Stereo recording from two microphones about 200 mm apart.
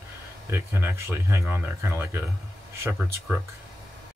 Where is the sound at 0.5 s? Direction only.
10° right (ahead or behind).